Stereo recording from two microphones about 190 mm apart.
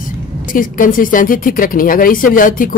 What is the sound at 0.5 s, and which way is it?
Speech, 45° left (ahead or behind).